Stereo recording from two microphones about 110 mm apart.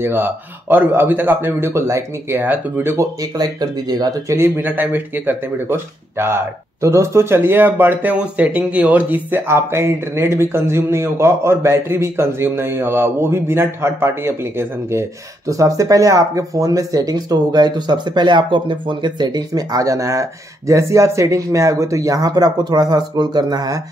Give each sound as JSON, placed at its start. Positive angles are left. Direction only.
{"t": 0.0, "sound": "speech", "side_deg": -20}
{"t": 3.2, "sound": "speech", "side_deg": -35}
{"t": 4.3, "sound": "speech", "side_deg": -20}